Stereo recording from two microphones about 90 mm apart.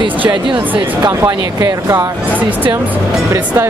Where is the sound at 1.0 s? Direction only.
50° right (ahead or behind).